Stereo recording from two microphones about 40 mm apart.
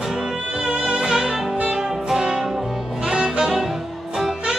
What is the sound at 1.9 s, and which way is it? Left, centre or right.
Music, centre.